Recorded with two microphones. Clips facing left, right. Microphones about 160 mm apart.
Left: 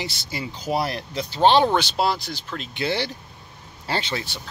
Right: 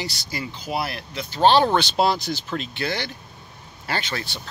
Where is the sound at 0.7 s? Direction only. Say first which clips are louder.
Left 4 dB; 40° left (ahead or behind).